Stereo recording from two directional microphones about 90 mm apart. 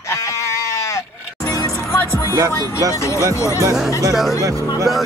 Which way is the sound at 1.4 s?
30° left (ahead or behind).